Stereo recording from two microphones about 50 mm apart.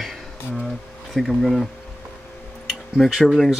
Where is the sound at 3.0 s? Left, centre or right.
Centre.